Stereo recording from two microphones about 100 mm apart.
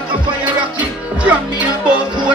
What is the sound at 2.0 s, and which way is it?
Speech, 50° right (ahead or behind).